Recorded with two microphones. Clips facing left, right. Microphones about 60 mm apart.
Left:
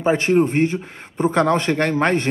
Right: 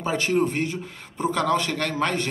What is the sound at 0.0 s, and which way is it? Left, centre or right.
A man's voice, left.